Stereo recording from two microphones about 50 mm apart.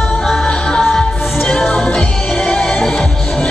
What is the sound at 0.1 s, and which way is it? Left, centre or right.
Music, centre.